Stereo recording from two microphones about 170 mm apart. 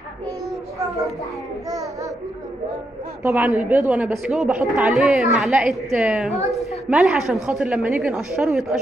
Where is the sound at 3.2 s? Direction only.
10° right (ahead or behind).